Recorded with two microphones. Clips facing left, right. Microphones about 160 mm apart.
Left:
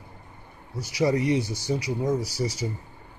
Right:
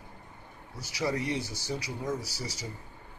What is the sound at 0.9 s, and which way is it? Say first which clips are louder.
Speech: left 8 dB; 15° left (ahead or behind).